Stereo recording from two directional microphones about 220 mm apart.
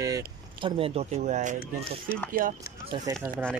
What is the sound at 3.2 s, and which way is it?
Speech, 15° right (ahead or behind).